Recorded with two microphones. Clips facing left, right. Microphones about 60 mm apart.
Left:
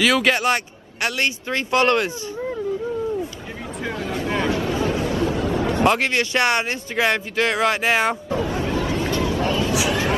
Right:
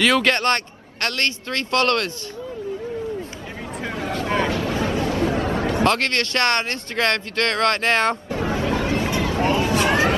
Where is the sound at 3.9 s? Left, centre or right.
Right.